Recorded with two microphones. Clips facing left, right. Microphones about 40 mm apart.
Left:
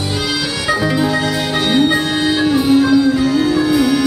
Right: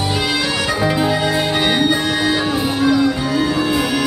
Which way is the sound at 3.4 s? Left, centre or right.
Centre.